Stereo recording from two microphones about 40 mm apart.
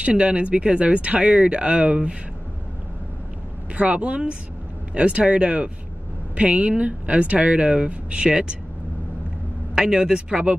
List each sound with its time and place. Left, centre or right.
0.0 s speech: right
3.7 s speech: right
9.8 s speech: centre